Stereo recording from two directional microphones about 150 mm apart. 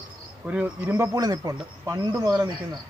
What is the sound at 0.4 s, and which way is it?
Speech, 10° right (ahead or behind).